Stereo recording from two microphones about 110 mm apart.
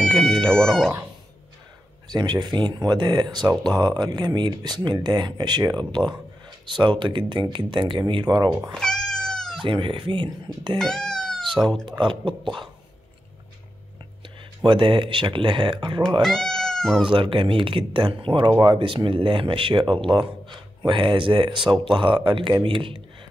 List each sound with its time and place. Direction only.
0.0 s speech: 5° left (ahead or behind)
2.0 s speech: 40° right (ahead or behind)
6.7 s speech: 45° right (ahead or behind)
8.7 s cat: 5° left (ahead or behind)
9.7 s speech: 50° right (ahead or behind)
10.8 s a sound: 5° left (ahead or behind)
11.6 s speech: 5° left (ahead or behind)
12.0 s speech: 50° right (ahead or behind)
14.6 s speech: 50° right (ahead or behind)
16.2 s speech: 5° left (ahead or behind)
17.1 s speech: 50° right (ahead or behind)
18.5 s speech: 40° right (ahead or behind)
18.8 s speech: 50° right (ahead or behind)